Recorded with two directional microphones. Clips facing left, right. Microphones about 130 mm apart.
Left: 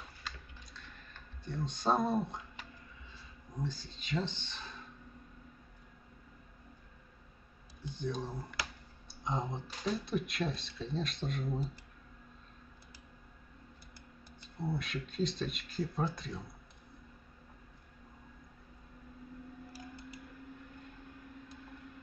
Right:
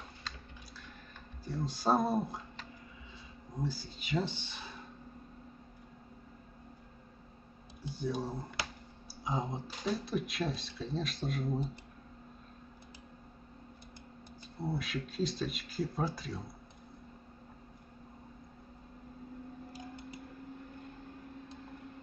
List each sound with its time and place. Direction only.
1.4 s speech: 5° right (ahead or behind)
3.5 s speech: 5° right (ahead or behind)
7.9 s speech: 5° right (ahead or behind)
8.4 s speech: 25° right (ahead or behind)
9.0 s speech: 5° right (ahead or behind)
14.6 s speech: 5° right (ahead or behind)
19.7 s a sound: 25° right (ahead or behind)